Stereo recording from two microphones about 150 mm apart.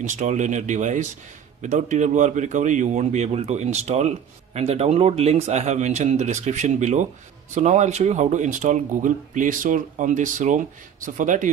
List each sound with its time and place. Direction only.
0.0 s a man's voice: 55° right (ahead or behind)